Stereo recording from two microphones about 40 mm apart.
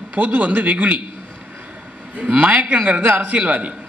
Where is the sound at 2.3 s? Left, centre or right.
Right.